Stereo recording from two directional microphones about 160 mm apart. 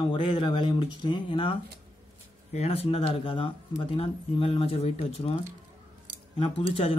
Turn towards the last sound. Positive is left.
turn(degrees=35)  # may be behind; listen again after turning